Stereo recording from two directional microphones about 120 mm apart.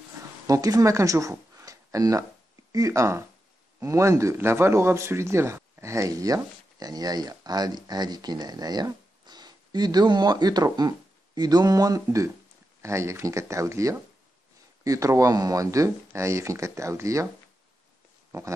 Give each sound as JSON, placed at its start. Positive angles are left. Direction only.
{"t": 0.5, "sound": "a man's voice", "side_deg": -30}